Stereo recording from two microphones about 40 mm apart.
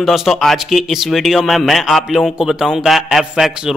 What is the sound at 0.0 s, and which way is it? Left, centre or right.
A man's voice, centre.